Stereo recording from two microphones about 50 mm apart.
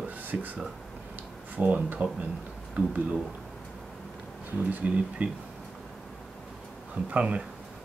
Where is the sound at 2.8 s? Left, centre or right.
Right.